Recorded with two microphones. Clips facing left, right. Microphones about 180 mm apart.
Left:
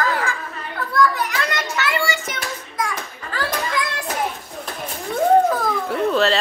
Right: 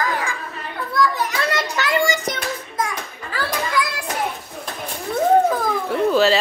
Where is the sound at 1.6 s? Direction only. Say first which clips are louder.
Right 3 dB; 35° right (ahead or behind).